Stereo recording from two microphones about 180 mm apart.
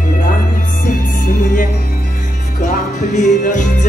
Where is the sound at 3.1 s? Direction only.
40° left (ahead or behind).